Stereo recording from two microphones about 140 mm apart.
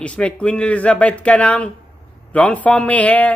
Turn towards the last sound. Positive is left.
turn(degrees=10)  # may be behind; listen again after turning